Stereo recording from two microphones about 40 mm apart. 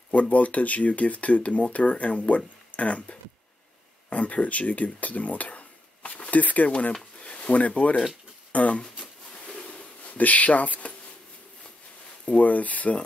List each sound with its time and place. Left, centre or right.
0.1 s speech: left
7.2 s a sound: left
8.5 s speech: left
9.0 s a sound: left
10.0 s speech: left
12.4 s speech: left